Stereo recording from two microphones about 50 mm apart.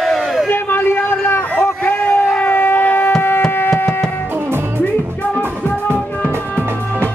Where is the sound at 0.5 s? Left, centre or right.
Left.